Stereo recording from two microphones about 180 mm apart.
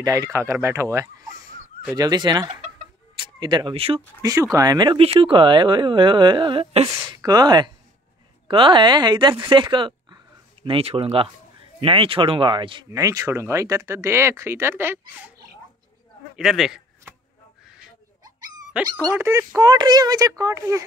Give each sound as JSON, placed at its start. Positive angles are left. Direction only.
{"t": 0.0, "sound": "speech", "side_deg": -20}
{"t": 4.2, "sound": "speech", "side_deg": -20}
{"t": 16.3, "sound": "a man's voice", "side_deg": 0}
{"t": 19.1, "sound": "speech", "side_deg": -15}